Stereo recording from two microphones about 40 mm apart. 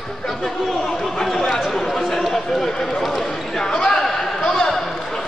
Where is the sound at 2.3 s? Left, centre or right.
Centre.